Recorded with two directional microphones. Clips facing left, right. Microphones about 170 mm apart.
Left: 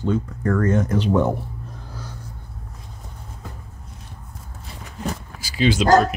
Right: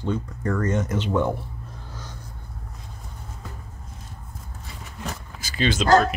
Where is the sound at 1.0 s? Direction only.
15° left (ahead or behind).